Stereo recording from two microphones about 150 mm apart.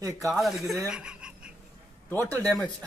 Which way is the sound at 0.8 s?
5° right (ahead or behind).